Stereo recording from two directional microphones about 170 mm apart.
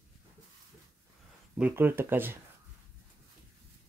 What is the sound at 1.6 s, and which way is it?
Speech, 10° right (ahead or behind).